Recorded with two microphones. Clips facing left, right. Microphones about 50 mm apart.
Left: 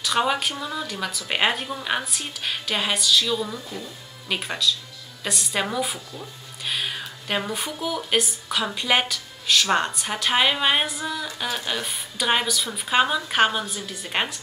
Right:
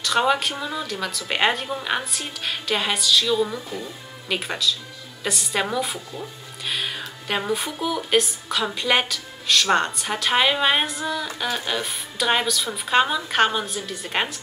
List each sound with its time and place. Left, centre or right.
0.0 s a woman's voice: centre
3.4 s speech: centre
4.3 s a woman's voice: centre